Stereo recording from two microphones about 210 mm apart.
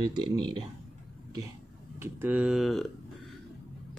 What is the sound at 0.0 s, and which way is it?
Speech, 20° right (ahead or behind).